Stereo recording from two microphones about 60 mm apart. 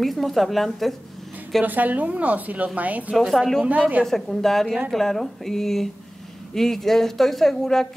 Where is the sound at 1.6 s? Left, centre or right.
Right.